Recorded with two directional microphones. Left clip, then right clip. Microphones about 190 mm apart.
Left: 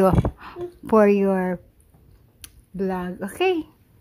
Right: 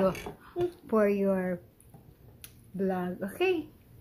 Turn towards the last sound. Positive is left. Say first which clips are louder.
# left 7 dB
turn(degrees=50)  # may be behind; listen again after turning